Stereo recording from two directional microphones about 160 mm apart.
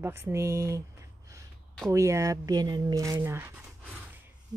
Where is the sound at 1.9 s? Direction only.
20° right (ahead or behind).